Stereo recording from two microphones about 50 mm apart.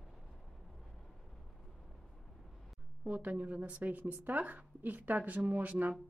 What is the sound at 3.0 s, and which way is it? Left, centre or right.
Speech, right.